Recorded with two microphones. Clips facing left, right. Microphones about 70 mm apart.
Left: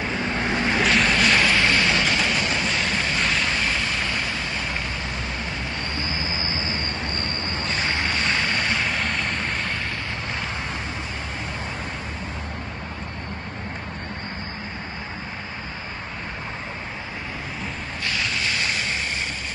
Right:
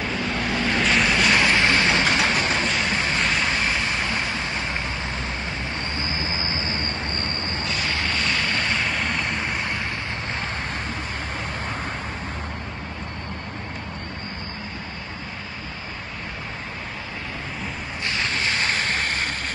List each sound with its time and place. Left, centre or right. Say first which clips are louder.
0.0 s vehicle: left 1 dB; left
0.8 s vehicle: even; centre
1.4 s a sound: right 1 dB; right
2.2 s vehicle: right 2 dB; right
2.6 s a sound: right 1 dB; centre
3.2 s vehicle: right 1 dB; centre
3.8 s vehicle: right 1 dB; right
6.5 s vehicle: even; left
7.6 s boat: left 2 dB; left
8.5 s vehicle: even; centre
18.0 s boat: right 1 dB; right